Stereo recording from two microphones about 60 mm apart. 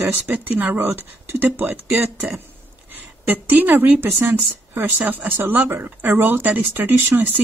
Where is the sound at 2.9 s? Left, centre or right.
Right.